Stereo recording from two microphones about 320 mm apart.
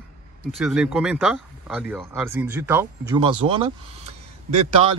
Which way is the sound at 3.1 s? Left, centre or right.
Centre.